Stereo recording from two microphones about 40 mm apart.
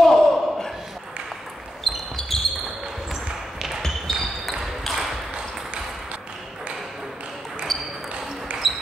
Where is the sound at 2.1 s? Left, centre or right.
Centre.